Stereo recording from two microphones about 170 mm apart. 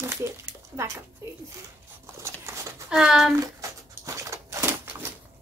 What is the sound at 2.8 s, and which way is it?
Speech, 5° right (ahead or behind).